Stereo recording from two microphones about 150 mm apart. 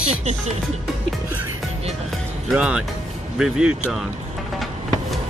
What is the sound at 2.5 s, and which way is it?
A child's voice, 5° right (ahead or behind).